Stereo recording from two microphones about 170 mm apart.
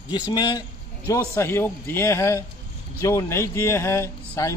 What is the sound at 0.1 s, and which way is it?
A man's voice, 25° left (ahead or behind).